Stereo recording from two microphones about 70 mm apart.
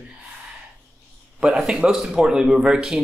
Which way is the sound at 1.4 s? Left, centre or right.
Centre.